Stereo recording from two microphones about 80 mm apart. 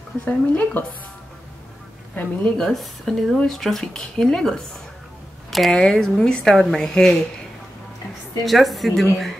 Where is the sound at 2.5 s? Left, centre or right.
Centre.